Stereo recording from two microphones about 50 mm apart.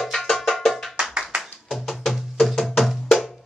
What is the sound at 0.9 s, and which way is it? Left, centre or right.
Clapping, centre.